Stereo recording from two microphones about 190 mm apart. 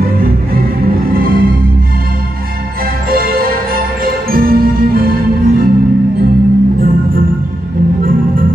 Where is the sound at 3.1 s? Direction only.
50° right (ahead or behind).